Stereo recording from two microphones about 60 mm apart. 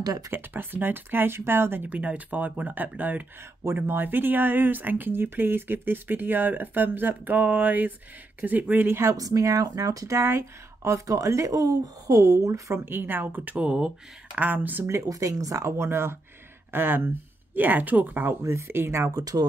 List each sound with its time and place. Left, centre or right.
0.3 s speech: right
1.9 s speech: right
3.6 s speech: right
9.1 s speech: right
10.1 s speech: right
11.1 s speech: right
12.7 s speech: right
13.7 s speech: centre
14.4 s speech: right
15.0 s speech: right
18.4 s speech: right
19.1 s speech: right